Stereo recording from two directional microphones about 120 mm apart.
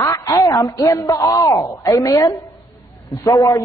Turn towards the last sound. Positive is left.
turn(degrees=30)  # may be behind; listen again after turning